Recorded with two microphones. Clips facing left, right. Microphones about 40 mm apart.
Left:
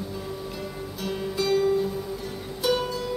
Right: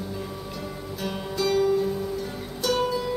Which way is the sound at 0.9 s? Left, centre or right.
Centre.